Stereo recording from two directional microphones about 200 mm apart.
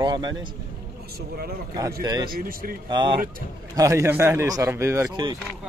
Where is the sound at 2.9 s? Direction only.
25° right (ahead or behind).